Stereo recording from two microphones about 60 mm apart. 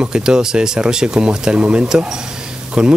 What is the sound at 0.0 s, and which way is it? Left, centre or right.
Speech, centre.